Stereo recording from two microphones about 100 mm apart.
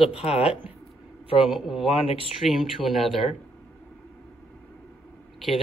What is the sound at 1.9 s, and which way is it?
Speech, 70° left (ahead or behind).